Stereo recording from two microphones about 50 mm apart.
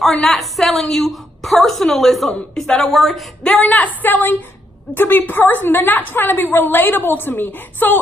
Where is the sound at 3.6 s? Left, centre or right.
Left.